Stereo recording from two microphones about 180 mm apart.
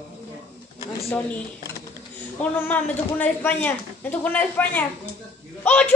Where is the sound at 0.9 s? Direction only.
15° left (ahead or behind).